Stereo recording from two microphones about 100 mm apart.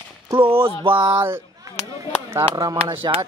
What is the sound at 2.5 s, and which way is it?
Speech, 40° right (ahead or behind).